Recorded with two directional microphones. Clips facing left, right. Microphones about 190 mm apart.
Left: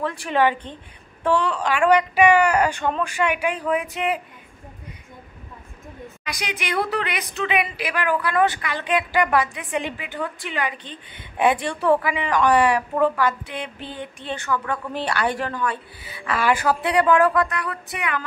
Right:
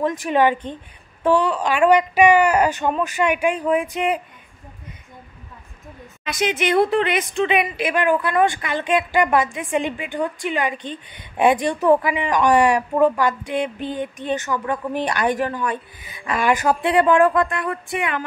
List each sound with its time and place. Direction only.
0.3 s a woman's voice: 15° right (ahead or behind)
6.2 s a woman's voice: 25° right (ahead or behind)